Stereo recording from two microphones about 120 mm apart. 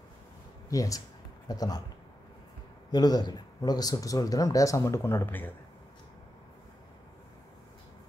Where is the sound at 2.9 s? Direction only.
35° left (ahead or behind); by 5.5 s 15° left (ahead or behind).